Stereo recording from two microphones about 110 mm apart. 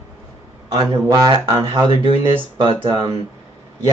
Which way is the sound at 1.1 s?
30° right (ahead or behind).